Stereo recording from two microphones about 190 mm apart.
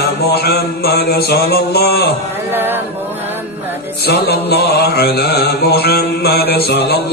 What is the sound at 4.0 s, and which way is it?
Mantra, 60° left (ahead or behind).